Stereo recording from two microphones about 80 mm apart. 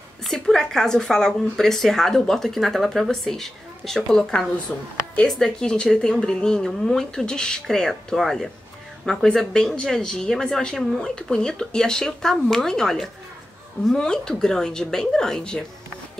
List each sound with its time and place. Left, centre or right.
0.3 s speech: centre
4.7 s a woman's voice: centre